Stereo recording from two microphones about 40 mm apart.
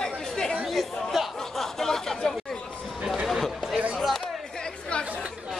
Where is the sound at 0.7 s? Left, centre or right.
Centre.